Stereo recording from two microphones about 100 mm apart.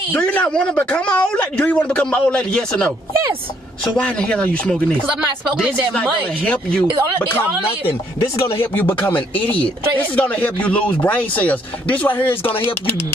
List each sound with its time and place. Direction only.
0.1 s speech: 15° left (ahead or behind)
3.9 s speech: 10° left (ahead or behind)
6.4 s speech: 10° left (ahead or behind)
8.4 s speech: 65° left (ahead or behind)
8.7 s speech: 20° left (ahead or behind)
9.3 s speech: 60° left (ahead or behind)
9.9 s speech: 15° left (ahead or behind)